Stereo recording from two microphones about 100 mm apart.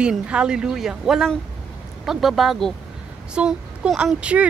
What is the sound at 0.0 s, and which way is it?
A woman's voice, 10° right (ahead or behind).